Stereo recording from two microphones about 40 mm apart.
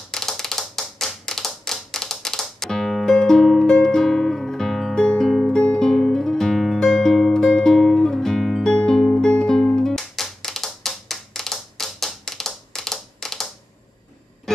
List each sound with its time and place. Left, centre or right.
0.1 s tap: centre
1.6 s music: centre
4.9 s guitar: centre
5.8 s music: centre